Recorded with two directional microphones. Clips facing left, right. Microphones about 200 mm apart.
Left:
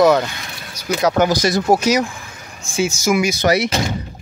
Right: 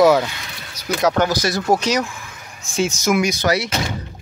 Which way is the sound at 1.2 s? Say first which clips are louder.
Left 3 dB; 15° left (ahead or behind).